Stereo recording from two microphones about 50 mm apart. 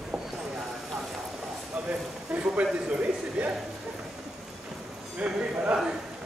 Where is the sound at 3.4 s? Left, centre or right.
Right.